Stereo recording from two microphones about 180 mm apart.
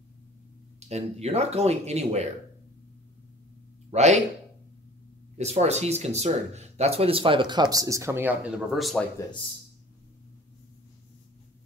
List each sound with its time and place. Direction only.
0.7 s speech: 35° right (ahead or behind)
3.9 s speech: 40° right (ahead or behind)
5.4 s speech: 35° right (ahead or behind); by 9.0 s centre (ahead or behind)